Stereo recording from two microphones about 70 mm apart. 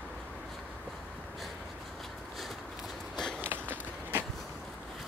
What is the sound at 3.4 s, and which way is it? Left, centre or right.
Skateboard, right.